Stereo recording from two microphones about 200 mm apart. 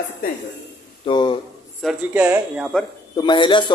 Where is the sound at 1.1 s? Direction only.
25° left (ahead or behind).